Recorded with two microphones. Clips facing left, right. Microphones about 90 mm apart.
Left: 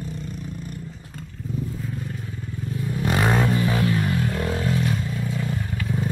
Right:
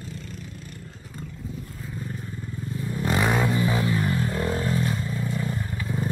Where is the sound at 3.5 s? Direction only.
15° right (ahead or behind).